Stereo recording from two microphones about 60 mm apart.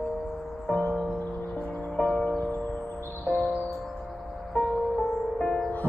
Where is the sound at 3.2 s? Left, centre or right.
Left.